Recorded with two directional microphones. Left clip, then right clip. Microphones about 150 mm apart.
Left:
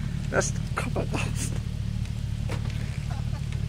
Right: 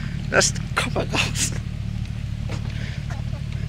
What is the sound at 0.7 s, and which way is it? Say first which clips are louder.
Speech: right 7 dB; 30° right (ahead or behind).